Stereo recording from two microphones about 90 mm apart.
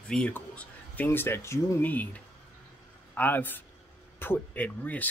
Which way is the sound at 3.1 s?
20° left (ahead or behind).